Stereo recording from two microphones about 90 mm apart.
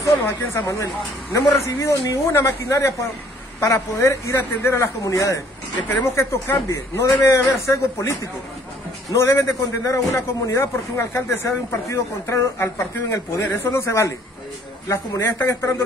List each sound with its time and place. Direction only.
0.1 s a man's voice: 30° left (ahead or behind)
5.8 s speech: 15° left (ahead or behind)
6.1 s a man's voice: 30° left (ahead or behind)